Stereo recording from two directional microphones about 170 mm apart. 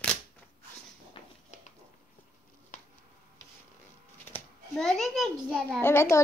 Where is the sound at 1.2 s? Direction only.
30° left (ahead or behind).